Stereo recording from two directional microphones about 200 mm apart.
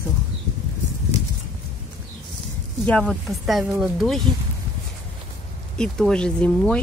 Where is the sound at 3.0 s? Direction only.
Centre (ahead or behind).